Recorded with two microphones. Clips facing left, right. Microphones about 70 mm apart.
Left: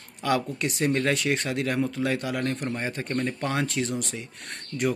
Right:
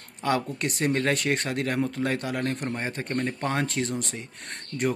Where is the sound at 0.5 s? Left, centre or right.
Right.